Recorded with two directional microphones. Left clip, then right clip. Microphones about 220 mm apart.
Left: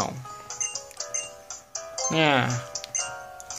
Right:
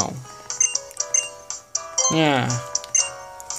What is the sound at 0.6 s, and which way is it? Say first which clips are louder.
Music: right 10 dB; 40° right (ahead or behind).